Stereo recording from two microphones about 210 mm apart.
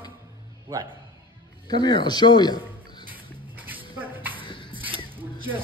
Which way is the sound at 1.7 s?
20° left (ahead or behind).